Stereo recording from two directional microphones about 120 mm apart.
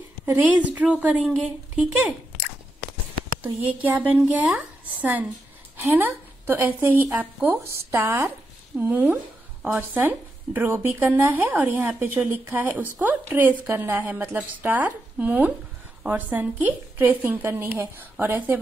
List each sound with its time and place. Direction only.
0.2 s speech: 15° right (ahead or behind)
3.8 s speech: 15° right (ahead or behind)